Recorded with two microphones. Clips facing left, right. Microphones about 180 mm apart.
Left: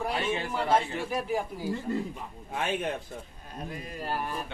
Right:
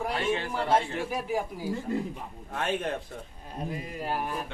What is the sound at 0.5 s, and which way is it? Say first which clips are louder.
A man's voice: left 2 dB; 10° right (ahead or behind).